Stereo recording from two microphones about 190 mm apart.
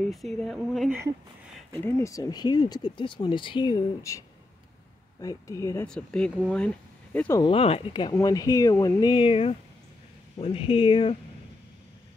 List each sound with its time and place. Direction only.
0.0 s speech: centre (ahead or behind)
1.7 s speech: 10° left (ahead or behind)
5.2 s speech: 20° left (ahead or behind)
5.9 s speech: 5° left (ahead or behind)
7.4 s speech: 30° left (ahead or behind)